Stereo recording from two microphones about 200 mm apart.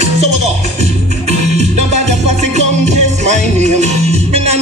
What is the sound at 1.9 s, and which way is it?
Music, 35° right (ahead or behind).